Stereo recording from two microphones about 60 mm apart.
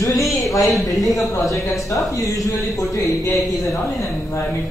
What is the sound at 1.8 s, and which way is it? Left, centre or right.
Speech, left.